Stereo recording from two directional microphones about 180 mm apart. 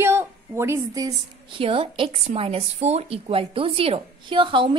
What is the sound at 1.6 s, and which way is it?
A woman's voice, 30° right (ahead or behind).